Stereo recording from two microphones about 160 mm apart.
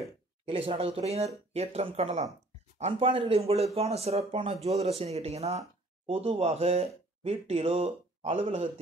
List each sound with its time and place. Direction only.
0.5 s speech: 35° right (ahead or behind)